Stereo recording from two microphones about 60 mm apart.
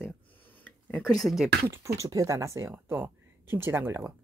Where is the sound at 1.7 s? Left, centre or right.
Right.